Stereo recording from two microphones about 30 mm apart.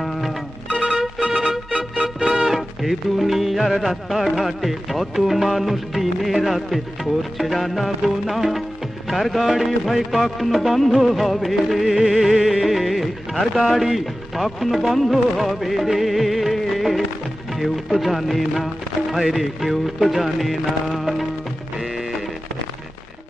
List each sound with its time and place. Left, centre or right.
0.8 s music: right
2.2 s music: centre